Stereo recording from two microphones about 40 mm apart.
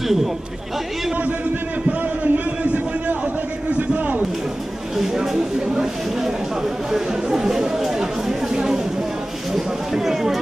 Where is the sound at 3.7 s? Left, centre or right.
Right.